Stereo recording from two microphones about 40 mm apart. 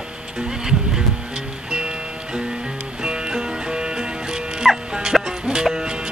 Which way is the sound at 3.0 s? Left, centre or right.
Right.